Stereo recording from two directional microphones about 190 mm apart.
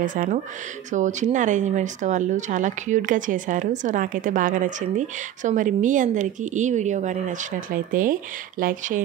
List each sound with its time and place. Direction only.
0.0 s speech: 45° right (ahead or behind)